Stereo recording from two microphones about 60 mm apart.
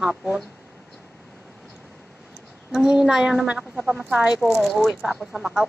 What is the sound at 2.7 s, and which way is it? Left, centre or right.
A child's voice, centre.